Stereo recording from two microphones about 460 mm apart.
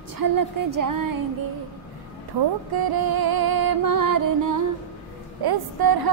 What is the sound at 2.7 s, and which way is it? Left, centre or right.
Music, right.